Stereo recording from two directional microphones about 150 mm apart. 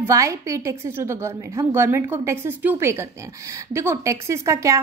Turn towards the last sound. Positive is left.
turn(degrees=-20)  # may be behind; listen again after turning